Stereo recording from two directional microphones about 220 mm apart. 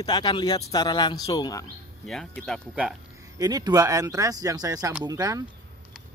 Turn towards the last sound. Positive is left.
turn(degrees=-15)  # may be behind; listen again after turning